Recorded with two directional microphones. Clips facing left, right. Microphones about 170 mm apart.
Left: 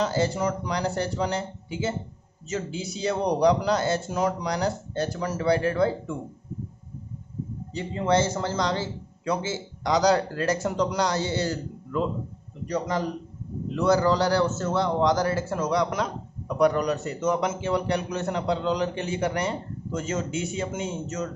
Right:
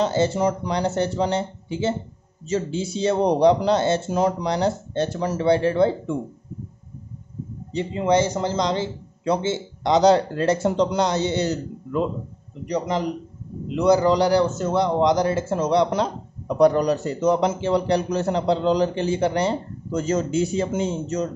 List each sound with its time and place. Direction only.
0.0 s a man's voice: 25° right (ahead or behind)
7.7 s a man's voice: 20° right (ahead or behind)